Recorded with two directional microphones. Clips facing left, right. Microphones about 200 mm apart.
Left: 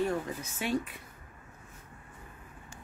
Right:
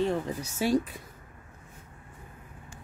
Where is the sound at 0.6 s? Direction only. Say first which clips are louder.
Right 6 dB; 35° right (ahead or behind).